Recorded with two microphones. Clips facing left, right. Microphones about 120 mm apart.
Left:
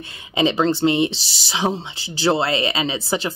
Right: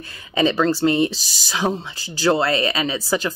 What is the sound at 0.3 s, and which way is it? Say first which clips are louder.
Speech: even; 20° left (ahead or behind).